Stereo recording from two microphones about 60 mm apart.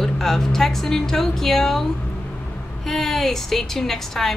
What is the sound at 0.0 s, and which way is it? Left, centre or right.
A woman's voice, centre.